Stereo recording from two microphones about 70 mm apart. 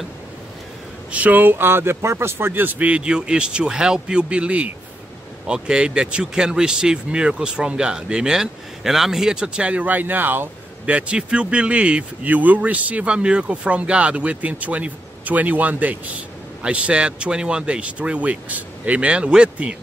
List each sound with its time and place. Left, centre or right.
1.1 s speech: right